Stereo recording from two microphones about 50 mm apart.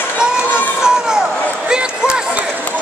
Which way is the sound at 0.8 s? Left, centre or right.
Centre.